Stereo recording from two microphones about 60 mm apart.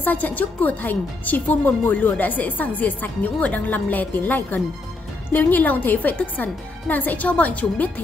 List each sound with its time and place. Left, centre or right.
0.0 s speech: left